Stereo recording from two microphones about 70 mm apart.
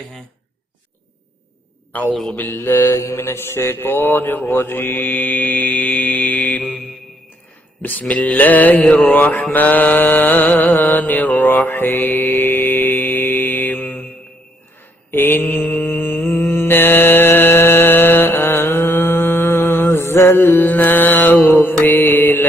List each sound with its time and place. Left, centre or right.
2.3 s speech: left
3.3 s speech: left
4.6 s mantra: left
7.8 s speech: left
9.1 s mantra: left
15.0 s mantra: left